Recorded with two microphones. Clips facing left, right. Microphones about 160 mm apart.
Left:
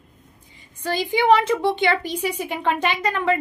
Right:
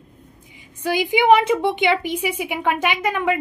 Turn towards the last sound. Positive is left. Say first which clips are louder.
# right 1 dB
turn(degrees=-15)  # may be behind; listen again after turning